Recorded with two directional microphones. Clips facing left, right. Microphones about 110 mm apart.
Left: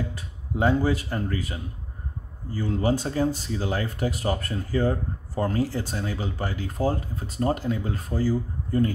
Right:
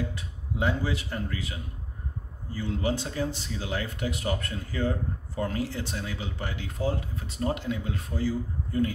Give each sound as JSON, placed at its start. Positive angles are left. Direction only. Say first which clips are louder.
{"t": 0.1, "sound": "speech", "louder": "left 3 dB", "side_deg": 40}